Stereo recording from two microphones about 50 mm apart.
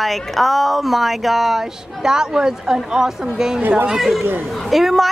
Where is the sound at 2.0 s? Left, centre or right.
Centre.